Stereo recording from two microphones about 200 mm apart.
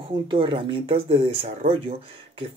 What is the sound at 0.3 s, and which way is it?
Speech, 25° right (ahead or behind).